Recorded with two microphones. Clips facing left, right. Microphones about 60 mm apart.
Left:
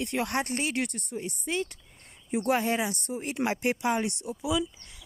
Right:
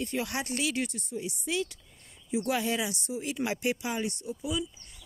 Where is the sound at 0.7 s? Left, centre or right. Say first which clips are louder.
Left 1 dB; left.